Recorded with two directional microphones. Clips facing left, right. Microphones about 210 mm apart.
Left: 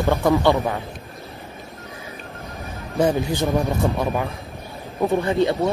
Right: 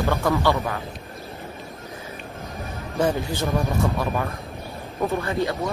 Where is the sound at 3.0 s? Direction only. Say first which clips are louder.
Left 3 dB; 15° left (ahead or behind).